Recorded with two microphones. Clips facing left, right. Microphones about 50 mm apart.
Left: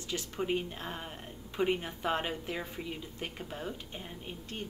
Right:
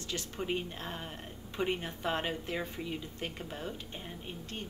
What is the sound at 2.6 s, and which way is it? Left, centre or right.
A woman's voice, centre.